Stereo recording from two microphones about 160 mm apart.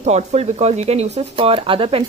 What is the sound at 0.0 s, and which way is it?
Speech, 45° right (ahead or behind).